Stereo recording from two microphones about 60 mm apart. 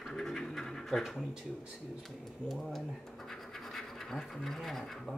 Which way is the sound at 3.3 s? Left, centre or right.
Centre.